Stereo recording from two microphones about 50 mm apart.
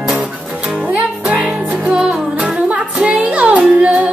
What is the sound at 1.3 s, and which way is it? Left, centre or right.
Music, centre.